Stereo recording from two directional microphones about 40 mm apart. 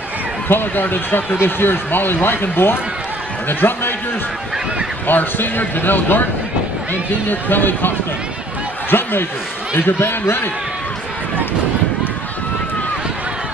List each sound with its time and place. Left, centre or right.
0.5 s speech: left
5.0 s speech: left
8.9 s a sound: left
9.8 s speech: left